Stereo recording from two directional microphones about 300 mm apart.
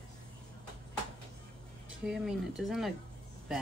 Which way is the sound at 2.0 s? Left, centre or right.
Centre.